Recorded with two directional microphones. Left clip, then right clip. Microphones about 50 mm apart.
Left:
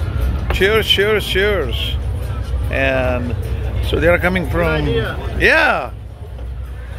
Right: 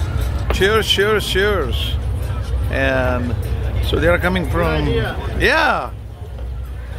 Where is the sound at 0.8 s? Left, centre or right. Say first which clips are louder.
Left 1 dB; centre.